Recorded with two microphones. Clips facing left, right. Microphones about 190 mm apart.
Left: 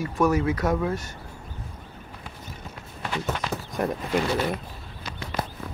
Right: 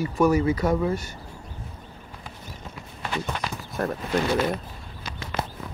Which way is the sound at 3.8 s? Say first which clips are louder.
Left 1 dB; 15° left (ahead or behind).